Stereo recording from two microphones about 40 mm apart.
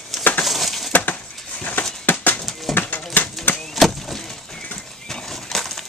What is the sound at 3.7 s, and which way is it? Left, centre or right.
Vehicle, centre.